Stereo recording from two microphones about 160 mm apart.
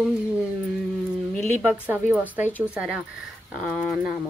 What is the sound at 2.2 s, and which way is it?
Speech, 10° right (ahead or behind).